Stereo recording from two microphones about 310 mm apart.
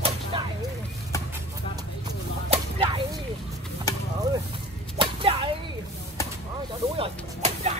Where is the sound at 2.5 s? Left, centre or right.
Centre.